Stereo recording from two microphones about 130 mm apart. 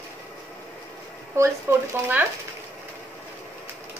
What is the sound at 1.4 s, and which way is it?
Speech, 20° right (ahead or behind).